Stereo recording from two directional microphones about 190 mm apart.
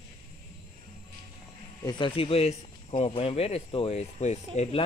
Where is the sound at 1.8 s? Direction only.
25° left (ahead or behind).